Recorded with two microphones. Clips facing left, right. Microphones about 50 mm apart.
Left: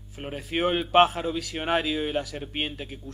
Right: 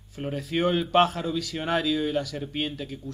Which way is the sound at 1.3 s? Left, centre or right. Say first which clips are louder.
Even; left.